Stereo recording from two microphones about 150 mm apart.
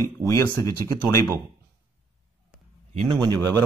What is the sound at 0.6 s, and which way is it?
Speech, 20° left (ahead or behind).